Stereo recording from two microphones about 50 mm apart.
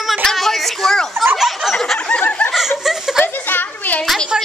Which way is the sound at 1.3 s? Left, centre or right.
Centre.